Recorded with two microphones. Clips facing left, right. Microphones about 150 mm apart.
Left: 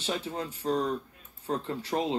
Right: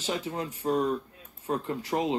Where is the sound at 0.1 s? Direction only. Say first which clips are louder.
Right 1 dB; 30° left (ahead or behind).